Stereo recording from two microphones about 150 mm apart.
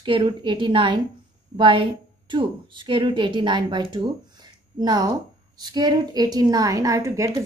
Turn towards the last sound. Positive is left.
turn(degrees=-20)  # may be behind; listen again after turning